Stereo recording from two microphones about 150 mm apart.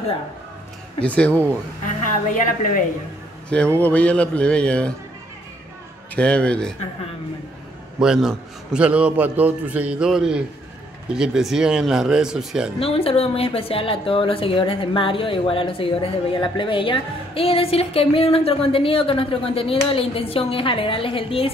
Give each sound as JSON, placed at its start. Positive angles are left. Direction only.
{"t": 1.0, "sound": "a man's voice", "side_deg": 10}
{"t": 2.3, "sound": "a woman's voice", "side_deg": 65}
{"t": 3.4, "sound": "a man's voice", "side_deg": 5}
{"t": 6.1, "sound": "a man's voice", "side_deg": 5}
{"t": 8.0, "sound": "a man's voice", "side_deg": -5}
{"t": 12.7, "sound": "a woman's voice", "side_deg": 40}